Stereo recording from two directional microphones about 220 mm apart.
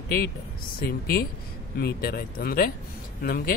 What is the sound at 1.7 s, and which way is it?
Speech, 45° left (ahead or behind).